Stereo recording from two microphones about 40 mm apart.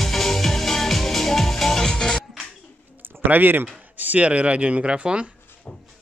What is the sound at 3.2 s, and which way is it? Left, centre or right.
Speech, right.